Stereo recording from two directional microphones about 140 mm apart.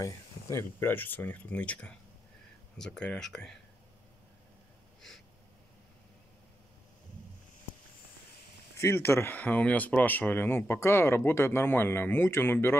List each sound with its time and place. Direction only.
0.0 s speech: 20° left (ahead or behind); by 3.5 s 5° left (ahead or behind)
8.7 s speech: 20° left (ahead or behind)